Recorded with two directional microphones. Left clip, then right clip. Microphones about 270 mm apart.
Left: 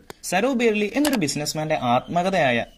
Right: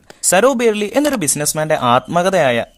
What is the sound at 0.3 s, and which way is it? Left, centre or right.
Speech, right.